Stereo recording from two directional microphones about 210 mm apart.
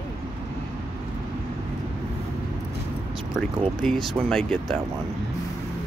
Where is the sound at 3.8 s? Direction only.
Centre (ahead or behind).